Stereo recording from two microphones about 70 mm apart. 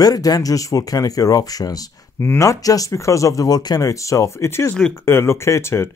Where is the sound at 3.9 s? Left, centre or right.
Left.